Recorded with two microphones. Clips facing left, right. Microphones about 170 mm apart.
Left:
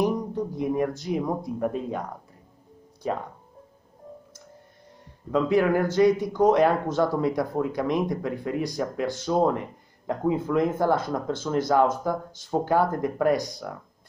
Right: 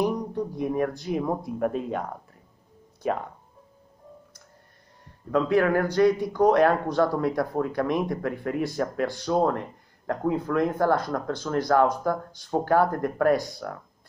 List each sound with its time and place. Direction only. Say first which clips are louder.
0.1 s a sound: left 1 dB; 5° left (ahead or behind)
1.0 s speech: even; centre (ahead or behind)
5.3 s speech: even; 5° left (ahead or behind)